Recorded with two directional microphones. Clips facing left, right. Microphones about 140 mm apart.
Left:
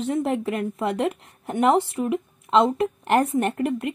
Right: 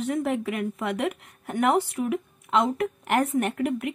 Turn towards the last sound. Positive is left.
turn(degrees=25)  # may be behind; listen again after turning